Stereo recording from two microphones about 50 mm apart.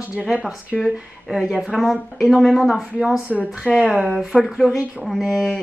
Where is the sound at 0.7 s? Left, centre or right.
Centre.